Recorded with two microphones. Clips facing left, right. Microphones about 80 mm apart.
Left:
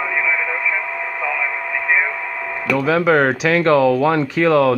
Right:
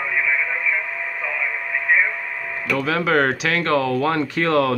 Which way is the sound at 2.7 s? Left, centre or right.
Centre.